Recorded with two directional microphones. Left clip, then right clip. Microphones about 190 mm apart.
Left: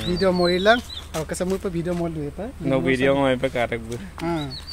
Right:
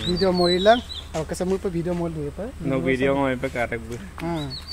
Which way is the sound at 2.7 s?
60° left (ahead or behind).